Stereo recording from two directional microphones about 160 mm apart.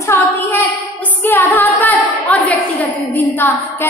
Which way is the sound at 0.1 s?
10° left (ahead or behind).